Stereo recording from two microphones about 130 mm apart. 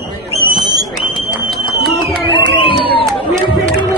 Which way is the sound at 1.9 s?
40° left (ahead or behind).